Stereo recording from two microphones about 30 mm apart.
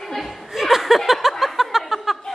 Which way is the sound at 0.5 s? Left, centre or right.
Centre.